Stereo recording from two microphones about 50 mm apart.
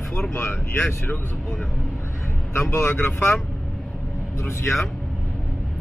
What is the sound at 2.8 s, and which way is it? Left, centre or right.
Speech, left.